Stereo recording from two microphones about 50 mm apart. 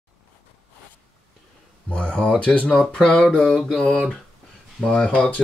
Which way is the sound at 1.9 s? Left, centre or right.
Left.